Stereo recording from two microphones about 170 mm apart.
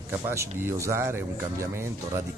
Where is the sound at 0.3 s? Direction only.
15° right (ahead or behind).